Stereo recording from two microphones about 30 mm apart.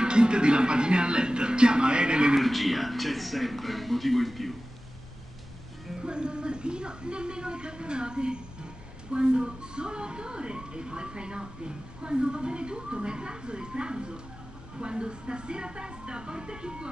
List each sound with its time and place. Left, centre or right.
0.0 s speech: right
2.4 s speech: centre
6.0 s speech: right